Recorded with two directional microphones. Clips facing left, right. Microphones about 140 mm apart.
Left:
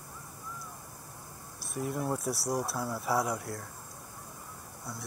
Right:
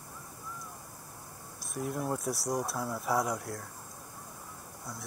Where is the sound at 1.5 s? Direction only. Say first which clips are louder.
Left 1 dB; centre (ahead or behind).